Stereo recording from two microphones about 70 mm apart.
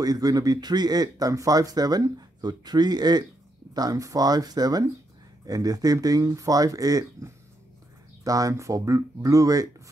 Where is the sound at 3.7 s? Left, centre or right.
Right.